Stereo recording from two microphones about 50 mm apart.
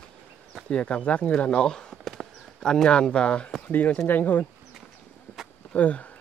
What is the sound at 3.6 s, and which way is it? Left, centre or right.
Speech, left.